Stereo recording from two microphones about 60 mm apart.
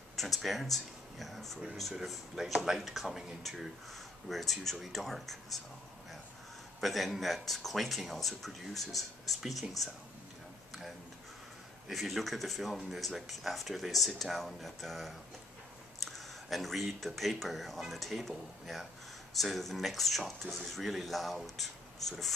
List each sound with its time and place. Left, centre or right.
0.1 s speech: centre
6.8 s speech: centre
11.9 s speech: centre